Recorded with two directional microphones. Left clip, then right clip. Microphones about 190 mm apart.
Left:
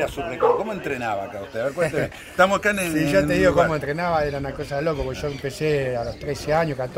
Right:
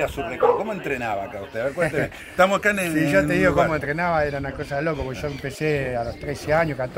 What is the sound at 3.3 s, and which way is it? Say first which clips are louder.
A man's voice: left 1 dB; 25° left (ahead or behind).